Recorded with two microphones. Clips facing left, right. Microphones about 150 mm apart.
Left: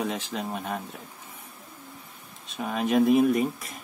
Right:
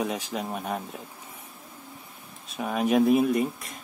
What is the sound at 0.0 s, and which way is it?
Speech, 10° right (ahead or behind).